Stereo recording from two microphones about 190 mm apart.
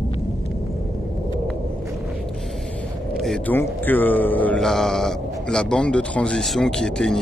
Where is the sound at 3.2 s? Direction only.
5° left (ahead or behind).